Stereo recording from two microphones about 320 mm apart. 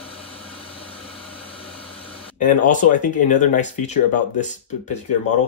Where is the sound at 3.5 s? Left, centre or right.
Left.